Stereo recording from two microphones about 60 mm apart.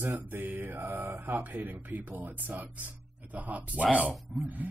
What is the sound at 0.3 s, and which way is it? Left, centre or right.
Mantra, right.